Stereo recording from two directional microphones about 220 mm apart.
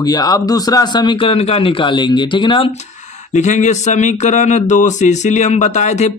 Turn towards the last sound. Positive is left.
turn(degrees=30)  # may be behind; listen again after turning